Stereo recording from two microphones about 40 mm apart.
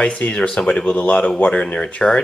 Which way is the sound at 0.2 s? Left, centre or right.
Left.